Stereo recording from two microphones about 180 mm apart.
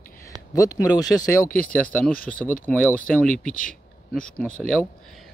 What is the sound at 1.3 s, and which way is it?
Speech, 10° left (ahead or behind).